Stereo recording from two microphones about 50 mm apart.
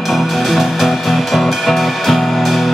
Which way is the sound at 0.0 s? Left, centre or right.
Centre.